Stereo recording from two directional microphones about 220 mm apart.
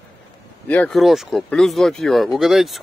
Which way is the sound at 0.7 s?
5° left (ahead or behind).